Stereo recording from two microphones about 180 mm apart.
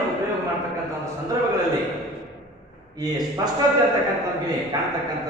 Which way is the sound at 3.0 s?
20° right (ahead or behind).